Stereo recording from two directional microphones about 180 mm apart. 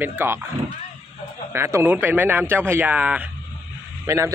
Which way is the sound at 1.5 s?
15° right (ahead or behind).